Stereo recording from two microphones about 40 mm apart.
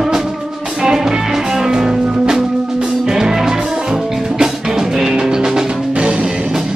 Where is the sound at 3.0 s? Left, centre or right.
Centre.